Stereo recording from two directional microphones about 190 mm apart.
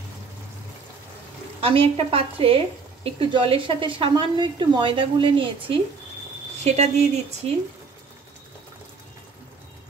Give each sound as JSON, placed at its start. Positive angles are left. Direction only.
{"t": 1.6, "sound": "a woman's voice", "side_deg": -30}